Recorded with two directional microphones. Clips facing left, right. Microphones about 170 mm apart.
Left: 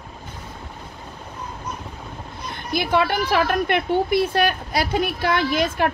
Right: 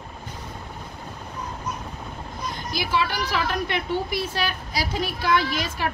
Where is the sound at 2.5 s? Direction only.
55° left (ahead or behind).